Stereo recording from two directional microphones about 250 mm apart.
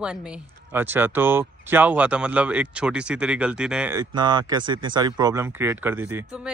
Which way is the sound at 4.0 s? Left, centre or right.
Centre.